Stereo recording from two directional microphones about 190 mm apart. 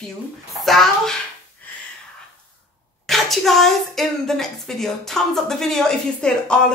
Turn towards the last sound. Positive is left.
turn(degrees=5)  # may be behind; listen again after turning